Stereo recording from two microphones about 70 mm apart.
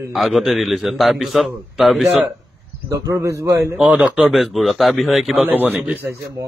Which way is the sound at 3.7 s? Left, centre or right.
Centre.